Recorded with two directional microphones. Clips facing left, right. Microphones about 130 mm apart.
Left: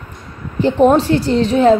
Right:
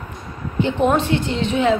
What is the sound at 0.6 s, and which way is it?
A woman's voice, 35° left (ahead or behind).